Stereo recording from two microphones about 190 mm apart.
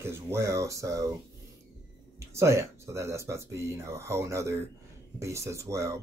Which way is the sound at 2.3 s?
15° right (ahead or behind).